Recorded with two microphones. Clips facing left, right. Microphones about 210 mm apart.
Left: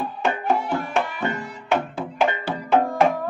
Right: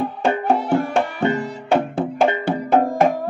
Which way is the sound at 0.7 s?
30° right (ahead or behind).